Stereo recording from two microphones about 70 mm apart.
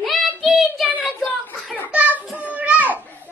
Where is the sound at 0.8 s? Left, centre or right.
Right.